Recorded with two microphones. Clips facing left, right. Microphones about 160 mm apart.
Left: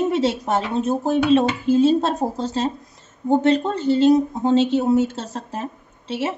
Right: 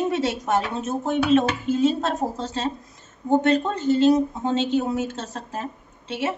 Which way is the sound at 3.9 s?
35° left (ahead or behind).